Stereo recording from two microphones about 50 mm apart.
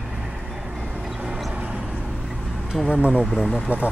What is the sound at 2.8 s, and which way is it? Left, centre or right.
Speech, right.